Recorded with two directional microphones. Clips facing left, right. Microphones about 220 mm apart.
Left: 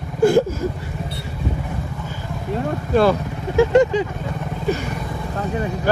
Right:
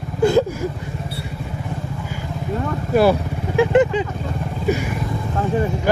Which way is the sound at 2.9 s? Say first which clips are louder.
Right 1 dB; 10° right (ahead or behind).